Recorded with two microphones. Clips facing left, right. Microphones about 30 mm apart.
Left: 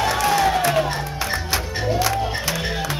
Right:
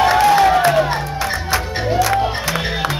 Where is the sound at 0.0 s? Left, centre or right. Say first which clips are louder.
Right 7 dB; right.